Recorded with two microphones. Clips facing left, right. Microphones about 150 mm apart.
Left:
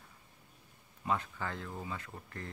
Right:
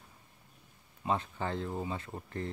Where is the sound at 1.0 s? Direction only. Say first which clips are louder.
Right 3 dB; 25° right (ahead or behind).